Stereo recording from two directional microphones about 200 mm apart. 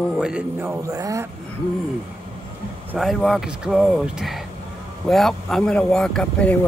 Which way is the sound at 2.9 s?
Centre (ahead or behind).